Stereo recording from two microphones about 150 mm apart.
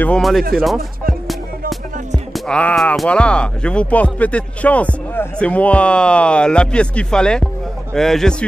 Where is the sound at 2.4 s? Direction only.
5° left (ahead or behind).